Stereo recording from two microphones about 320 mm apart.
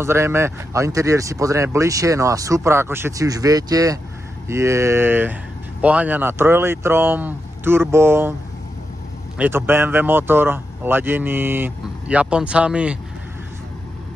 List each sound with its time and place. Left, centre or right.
0.0 s speech: centre
9.4 s speech: centre